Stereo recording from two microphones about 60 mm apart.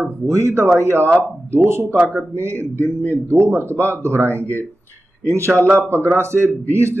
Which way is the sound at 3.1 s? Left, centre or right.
Right.